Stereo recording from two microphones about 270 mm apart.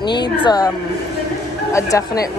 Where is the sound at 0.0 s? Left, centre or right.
Centre.